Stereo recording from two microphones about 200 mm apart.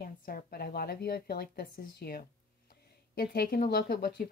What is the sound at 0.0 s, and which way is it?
Speech, 45° left (ahead or behind).